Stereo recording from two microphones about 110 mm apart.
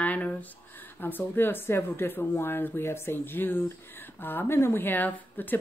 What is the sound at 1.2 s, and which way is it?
Speech, 20° left (ahead or behind).